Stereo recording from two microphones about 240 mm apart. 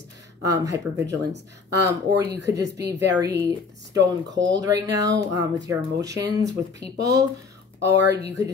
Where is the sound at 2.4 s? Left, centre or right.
Centre.